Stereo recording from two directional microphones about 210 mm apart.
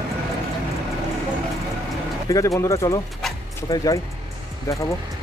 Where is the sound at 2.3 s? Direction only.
15° left (ahead or behind).